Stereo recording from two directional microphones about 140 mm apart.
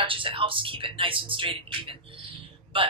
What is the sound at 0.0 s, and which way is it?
Speech, 40° right (ahead or behind).